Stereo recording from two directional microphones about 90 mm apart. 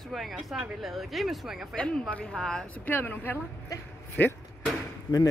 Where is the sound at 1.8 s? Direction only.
10° left (ahead or behind).